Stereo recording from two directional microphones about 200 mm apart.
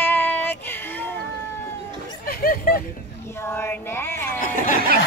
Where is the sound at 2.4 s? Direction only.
45° left (ahead or behind).